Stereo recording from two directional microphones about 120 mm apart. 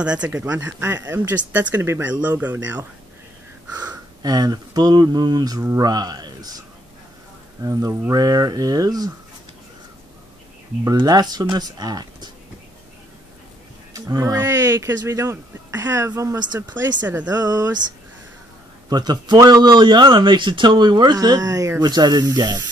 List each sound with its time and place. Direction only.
0.0 s speech: 10° right (ahead or behind)
4.2 s a man's voice: 35° right (ahead or behind)
7.6 s a man's voice: 30° right (ahead or behind)
10.8 s a man's voice: 30° right (ahead or behind)
13.9 s speech: 30° right (ahead or behind)
17.3 s a man's voice: 35° right (ahead or behind)
18.9 s a man's voice: 35° right (ahead or behind)